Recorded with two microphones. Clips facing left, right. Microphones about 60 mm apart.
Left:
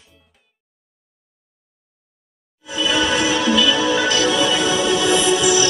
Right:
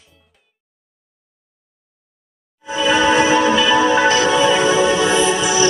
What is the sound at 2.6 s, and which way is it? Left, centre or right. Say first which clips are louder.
Music: right 5 dB; right.